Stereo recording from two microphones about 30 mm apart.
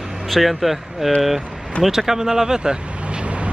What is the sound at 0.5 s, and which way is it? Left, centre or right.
Speech, centre.